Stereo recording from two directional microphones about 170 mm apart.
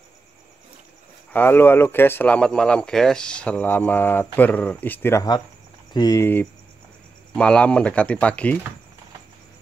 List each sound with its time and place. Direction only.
1.3 s speech: 10° left (ahead or behind)